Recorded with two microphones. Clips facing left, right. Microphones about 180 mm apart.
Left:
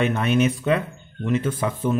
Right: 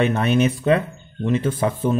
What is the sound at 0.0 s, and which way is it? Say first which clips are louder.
Speech: right 2 dB; 35° right (ahead or behind).